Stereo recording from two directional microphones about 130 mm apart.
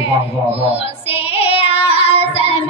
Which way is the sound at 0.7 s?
50° left (ahead or behind).